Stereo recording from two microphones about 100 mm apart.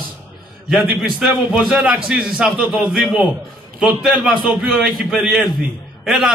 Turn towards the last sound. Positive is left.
turn(degrees=0)  # may be behind; listen again after turning